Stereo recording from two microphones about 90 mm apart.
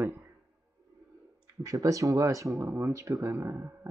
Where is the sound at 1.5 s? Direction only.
40° right (ahead or behind).